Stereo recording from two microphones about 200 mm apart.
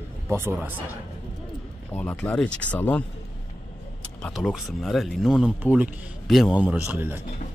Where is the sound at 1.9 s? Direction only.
10° left (ahead or behind).